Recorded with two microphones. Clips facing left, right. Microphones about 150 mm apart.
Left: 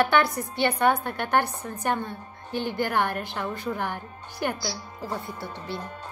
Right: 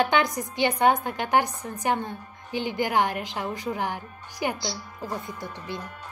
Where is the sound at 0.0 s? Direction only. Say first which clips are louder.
Left 1 dB; 20° right (ahead or behind).